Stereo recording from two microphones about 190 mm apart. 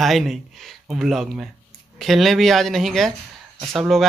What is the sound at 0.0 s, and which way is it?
Speech, centre (ahead or behind).